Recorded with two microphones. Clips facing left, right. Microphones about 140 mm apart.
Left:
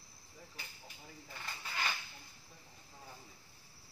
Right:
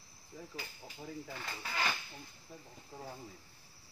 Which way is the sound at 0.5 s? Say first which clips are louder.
Right 7 dB; 90° right.